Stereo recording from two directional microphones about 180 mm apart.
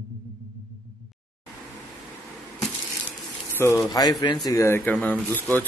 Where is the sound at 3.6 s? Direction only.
15° left (ahead or behind).